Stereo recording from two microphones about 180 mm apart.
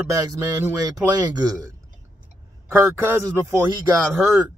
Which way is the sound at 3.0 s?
15° right (ahead or behind).